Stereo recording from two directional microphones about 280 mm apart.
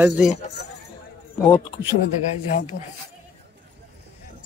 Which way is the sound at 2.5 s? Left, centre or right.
Left.